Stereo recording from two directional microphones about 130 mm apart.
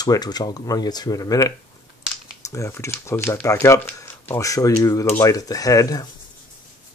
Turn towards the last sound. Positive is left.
turn(degrees=25)  # may be behind; listen again after turning